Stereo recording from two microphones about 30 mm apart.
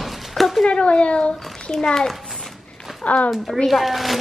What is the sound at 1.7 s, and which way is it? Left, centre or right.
Speech, centre.